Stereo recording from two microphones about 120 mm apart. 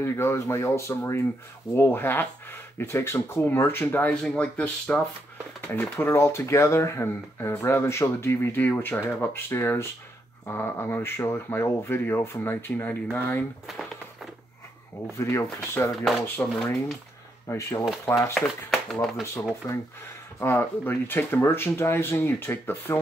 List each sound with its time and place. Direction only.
0.0 s speech: 20° left (ahead or behind)
15.0 s speech: 25° left (ahead or behind)
16.0 s speech: centre (ahead or behind)
17.5 s speech: 25° left (ahead or behind)
18.3 s speech: 5° left (ahead or behind)
19.6 s speech: 25° left (ahead or behind)